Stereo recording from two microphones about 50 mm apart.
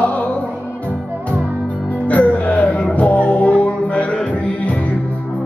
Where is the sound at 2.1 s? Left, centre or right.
Left.